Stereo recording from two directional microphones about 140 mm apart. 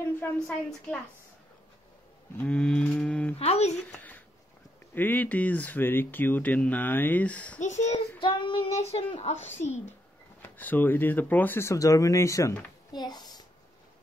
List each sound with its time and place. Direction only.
0.0 s a woman's voice: 10° left (ahead or behind)
2.3 s speech: 10° left (ahead or behind)
3.3 s a child's voice: 50° left (ahead or behind)
3.9 s a sound: 10° left (ahead or behind)
4.9 s speech: 15° left (ahead or behind)
7.6 s a child's voice: 60° left (ahead or behind)
8.2 s child singing: 35° left (ahead or behind)
8.7 s a child's voice: 50° left (ahead or behind)
10.4 s a child's voice: 15° left (ahead or behind); by 13.4 s 30° left (ahead or behind)